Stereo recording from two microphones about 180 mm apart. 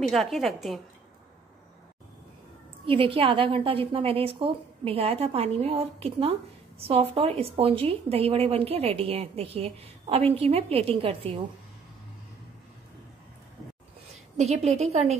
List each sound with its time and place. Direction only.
0.0 s a woman's voice: centre (ahead or behind)
2.9 s a woman's voice: 30° right (ahead or behind)
14.3 s a woman's voice: 35° right (ahead or behind)